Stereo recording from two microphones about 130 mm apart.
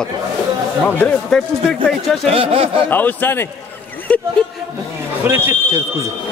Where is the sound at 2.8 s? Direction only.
15° left (ahead or behind).